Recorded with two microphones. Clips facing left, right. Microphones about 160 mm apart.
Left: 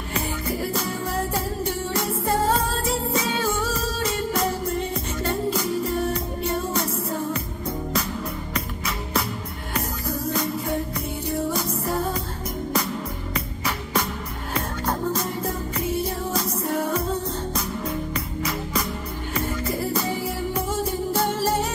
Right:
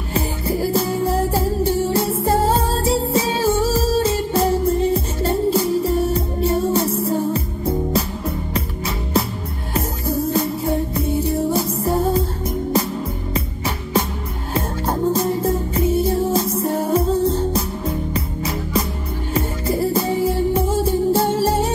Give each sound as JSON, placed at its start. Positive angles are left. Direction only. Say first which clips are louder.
{"t": 0.1, "sound": "music", "louder": "right 6 dB", "side_deg": -30}
{"t": 13.3, "sound": "music", "louder": "right 4 dB", "side_deg": -25}